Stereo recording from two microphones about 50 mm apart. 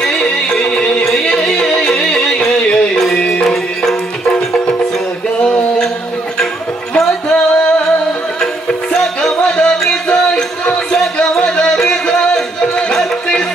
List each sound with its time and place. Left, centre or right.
0.0 s music: centre
1.2 s yodeling: centre
3.2 s music: centre
8.9 s music: centre